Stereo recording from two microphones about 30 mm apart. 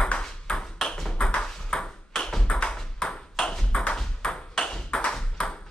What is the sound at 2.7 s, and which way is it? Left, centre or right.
Ping, left.